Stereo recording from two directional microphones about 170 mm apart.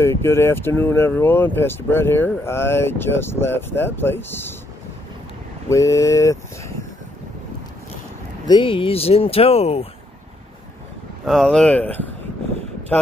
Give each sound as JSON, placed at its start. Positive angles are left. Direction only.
{"t": 0.0, "sound": "speech", "side_deg": 15}
{"t": 5.7, "sound": "speech", "side_deg": 20}
{"t": 8.5, "sound": "speech", "side_deg": 30}
{"t": 11.2, "sound": "speech", "side_deg": 0}